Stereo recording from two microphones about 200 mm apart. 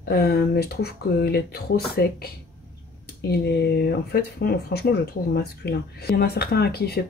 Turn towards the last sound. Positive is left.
turn(degrees=50)  # may be behind; listen again after turning